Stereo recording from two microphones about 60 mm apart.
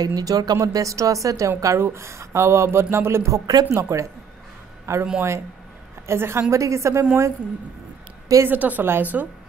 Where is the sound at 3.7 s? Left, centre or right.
Right.